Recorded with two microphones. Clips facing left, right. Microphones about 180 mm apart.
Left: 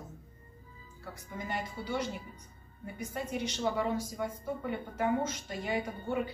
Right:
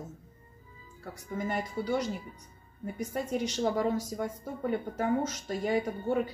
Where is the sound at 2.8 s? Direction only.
40° right (ahead or behind).